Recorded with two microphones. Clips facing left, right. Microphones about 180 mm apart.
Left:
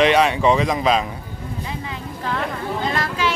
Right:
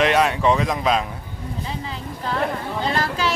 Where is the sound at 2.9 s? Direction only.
35° right (ahead or behind).